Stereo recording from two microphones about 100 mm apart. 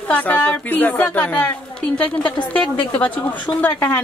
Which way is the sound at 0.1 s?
15° left (ahead or behind).